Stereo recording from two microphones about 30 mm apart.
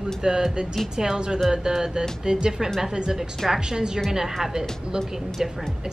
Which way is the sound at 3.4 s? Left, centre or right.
Centre.